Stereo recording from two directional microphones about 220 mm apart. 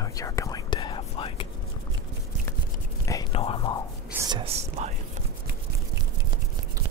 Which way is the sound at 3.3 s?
25° left (ahead or behind).